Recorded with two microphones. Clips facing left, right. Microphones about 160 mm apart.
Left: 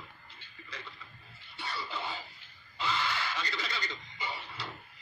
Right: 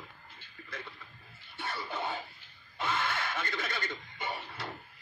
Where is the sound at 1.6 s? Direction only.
50° right (ahead or behind).